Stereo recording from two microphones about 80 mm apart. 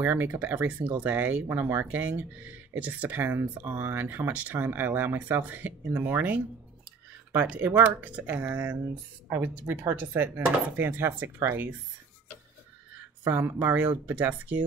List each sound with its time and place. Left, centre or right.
0.0 s speech: right
13.2 s speech: right